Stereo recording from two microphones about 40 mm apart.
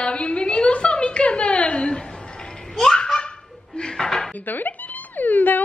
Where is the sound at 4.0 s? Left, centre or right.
Centre.